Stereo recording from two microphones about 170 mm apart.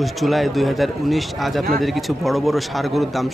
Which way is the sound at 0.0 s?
Centre (ahead or behind).